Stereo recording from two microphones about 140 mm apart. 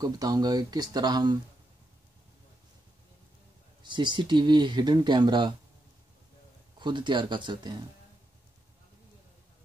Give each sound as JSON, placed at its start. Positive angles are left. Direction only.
{"t": 0.0, "sound": "speech", "side_deg": -30}
{"t": 3.8, "sound": "speech", "side_deg": -35}
{"t": 6.8, "sound": "speech", "side_deg": -35}